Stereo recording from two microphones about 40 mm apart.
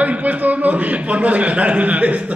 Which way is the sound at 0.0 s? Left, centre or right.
Right.